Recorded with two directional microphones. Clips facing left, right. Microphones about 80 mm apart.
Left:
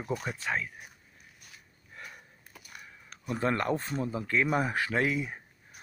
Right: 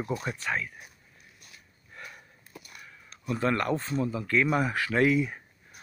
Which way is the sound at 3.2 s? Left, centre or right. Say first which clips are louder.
Right 2 dB; left.